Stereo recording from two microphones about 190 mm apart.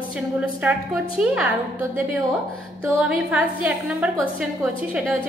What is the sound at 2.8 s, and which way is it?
A woman's voice, 10° right (ahead or behind).